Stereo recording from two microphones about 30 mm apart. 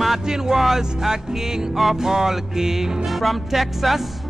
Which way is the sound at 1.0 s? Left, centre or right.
Centre.